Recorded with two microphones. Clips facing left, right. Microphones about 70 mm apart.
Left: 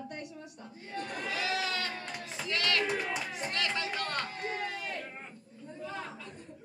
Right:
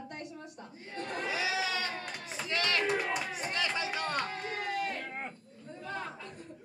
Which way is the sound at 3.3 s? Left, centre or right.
Centre.